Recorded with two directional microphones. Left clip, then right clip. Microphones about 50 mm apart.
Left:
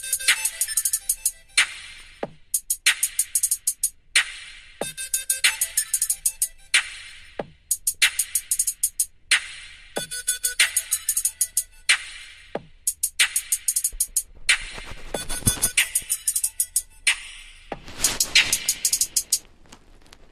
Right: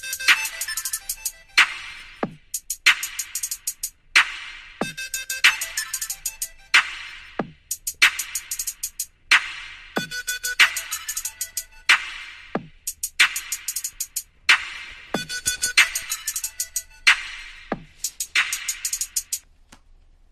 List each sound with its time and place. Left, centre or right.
0.0 s music: right